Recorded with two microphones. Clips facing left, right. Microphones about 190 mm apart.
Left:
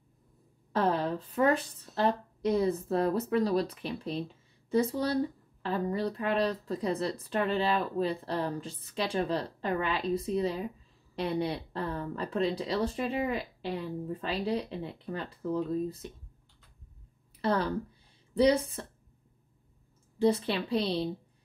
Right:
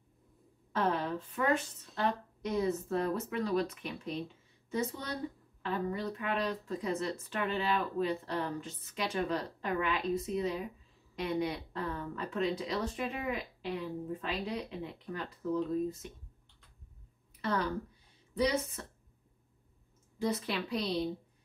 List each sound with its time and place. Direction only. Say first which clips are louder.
0.7 s a sound: left 4 dB; 35° left (ahead or behind)
2.0 s a woman's voice: left 5 dB; 35° left (ahead or behind)
17.4 s a woman's voice: left 4 dB; 30° left (ahead or behind)
20.2 s a woman's voice: left 7 dB; 30° left (ahead or behind)